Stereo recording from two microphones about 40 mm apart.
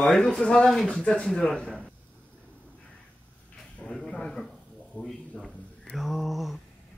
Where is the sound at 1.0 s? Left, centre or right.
Left.